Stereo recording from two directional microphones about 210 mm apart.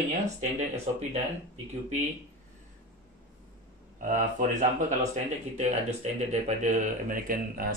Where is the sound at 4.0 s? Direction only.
40° right (ahead or behind).